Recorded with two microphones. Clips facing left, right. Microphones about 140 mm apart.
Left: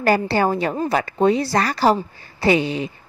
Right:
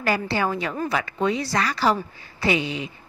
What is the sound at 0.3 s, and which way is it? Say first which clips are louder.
A woman's voice: left 5 dB; 40° left (ahead or behind).